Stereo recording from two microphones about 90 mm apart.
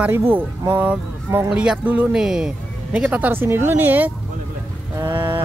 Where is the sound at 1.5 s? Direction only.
10° right (ahead or behind).